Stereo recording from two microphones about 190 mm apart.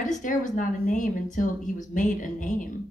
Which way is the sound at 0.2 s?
45° left (ahead or behind).